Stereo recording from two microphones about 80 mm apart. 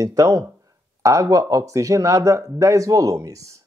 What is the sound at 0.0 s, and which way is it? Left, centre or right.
Speech, right.